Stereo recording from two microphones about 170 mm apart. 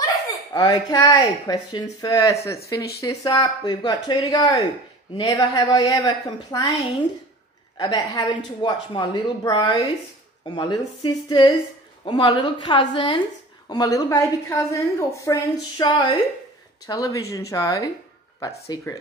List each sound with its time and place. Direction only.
0.0 s a woman's voice: 20° left (ahead or behind)
7.7 s a woman's voice: 25° left (ahead or behind)